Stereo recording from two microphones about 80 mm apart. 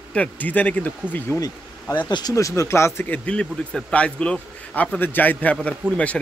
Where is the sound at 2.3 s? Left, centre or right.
Left.